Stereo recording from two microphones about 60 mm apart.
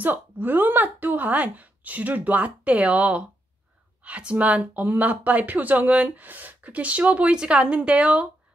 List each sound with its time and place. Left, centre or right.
0.0 s speech: right